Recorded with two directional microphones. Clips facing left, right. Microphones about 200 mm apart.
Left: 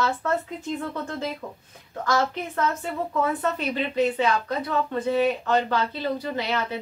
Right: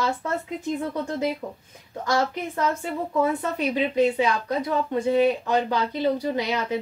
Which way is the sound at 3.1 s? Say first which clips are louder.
Right 2 dB; 15° right (ahead or behind).